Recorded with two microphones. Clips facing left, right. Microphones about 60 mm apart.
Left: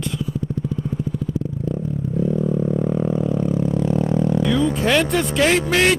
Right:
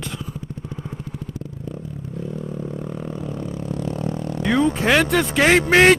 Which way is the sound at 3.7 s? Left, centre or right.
Left.